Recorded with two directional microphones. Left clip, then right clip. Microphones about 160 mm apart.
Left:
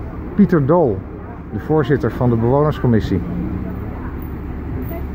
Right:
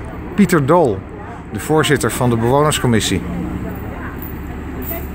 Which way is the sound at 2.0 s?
30° right (ahead or behind).